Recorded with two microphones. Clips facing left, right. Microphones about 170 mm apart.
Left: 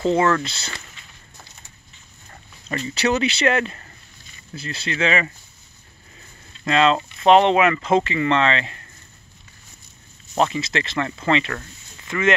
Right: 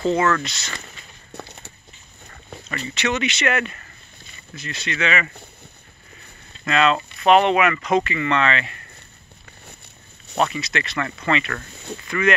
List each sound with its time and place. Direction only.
0.1 s speech: 30° left (ahead or behind)
1.3 s a sound: 65° right (ahead or behind)
2.7 s speech: 35° left (ahead or behind)
6.6 s speech: 25° left (ahead or behind)
10.3 s speech: 25° left (ahead or behind)